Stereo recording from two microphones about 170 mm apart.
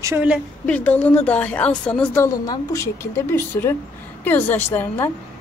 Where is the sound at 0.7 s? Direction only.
10° left (ahead or behind).